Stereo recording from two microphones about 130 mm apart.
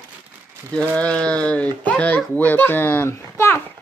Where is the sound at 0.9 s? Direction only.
10° left (ahead or behind).